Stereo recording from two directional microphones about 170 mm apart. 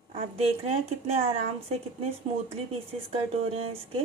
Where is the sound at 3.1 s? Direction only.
35° right (ahead or behind).